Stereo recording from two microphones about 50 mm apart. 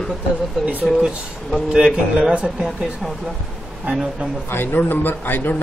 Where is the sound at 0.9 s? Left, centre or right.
Centre.